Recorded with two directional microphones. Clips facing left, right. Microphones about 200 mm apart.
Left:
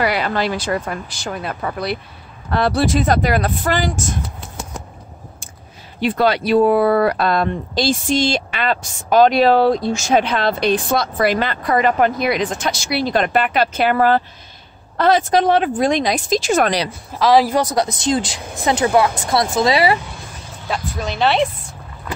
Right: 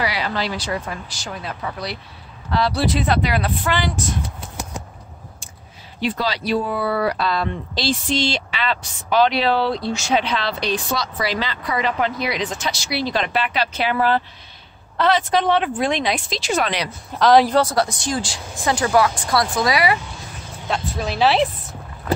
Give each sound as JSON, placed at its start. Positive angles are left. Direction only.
{"t": 0.0, "sound": "speech", "side_deg": 55}
{"t": 5.9, "sound": "speech", "side_deg": 55}
{"t": 17.1, "sound": "speech", "side_deg": 0}
{"t": 17.6, "sound": "speech", "side_deg": 20}
{"t": 20.6, "sound": "speech", "side_deg": 0}